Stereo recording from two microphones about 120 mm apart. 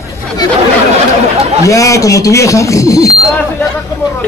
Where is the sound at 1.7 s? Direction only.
25° left (ahead or behind).